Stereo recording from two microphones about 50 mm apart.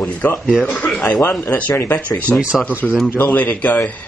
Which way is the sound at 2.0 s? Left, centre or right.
Left.